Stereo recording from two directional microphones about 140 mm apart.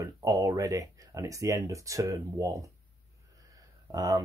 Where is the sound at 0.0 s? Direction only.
25° right (ahead or behind).